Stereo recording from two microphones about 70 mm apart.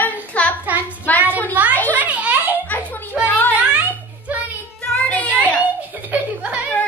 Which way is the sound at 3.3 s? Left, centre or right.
Left.